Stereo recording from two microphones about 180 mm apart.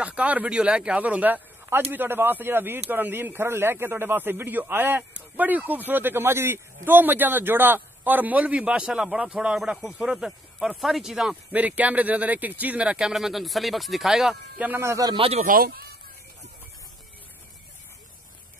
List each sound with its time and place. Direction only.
0.0 s speech: 5° right (ahead or behind); by 15.4 s 30° right (ahead or behind)
15.4 s speech: 55° right (ahead or behind)